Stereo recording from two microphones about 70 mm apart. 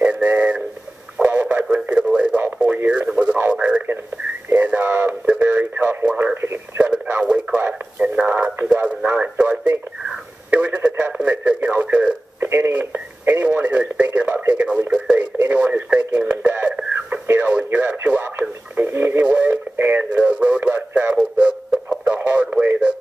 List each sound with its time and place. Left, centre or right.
0.0 s a sound: right
1.1 s radio: right
2.4 s radio: right
4.6 s a sound: right
5.4 s radio: right
7.2 s radio: right
12.4 s radio: right; by 15.1 s centre
15.4 s radio: right
18.9 s radio: right
19.2 s radio: centre